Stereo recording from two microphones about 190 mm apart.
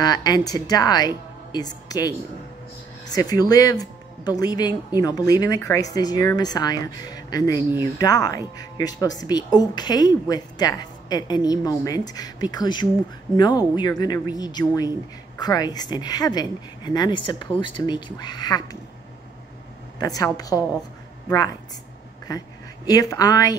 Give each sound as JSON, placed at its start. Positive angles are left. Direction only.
{"t": 0.0, "sound": "speech", "side_deg": 20}
{"t": 20.0, "sound": "speech", "side_deg": 20}
{"t": 22.3, "sound": "speech", "side_deg": 20}